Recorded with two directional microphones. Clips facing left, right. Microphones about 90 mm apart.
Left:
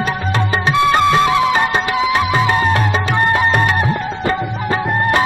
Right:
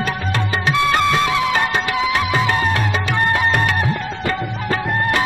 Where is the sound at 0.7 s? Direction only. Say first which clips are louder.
Left 4 dB; 25° left (ahead or behind).